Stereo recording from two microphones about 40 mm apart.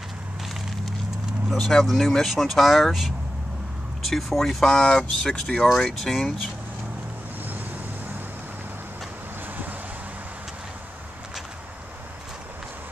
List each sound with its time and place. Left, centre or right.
1.5 s speech: centre
4.6 s speech: centre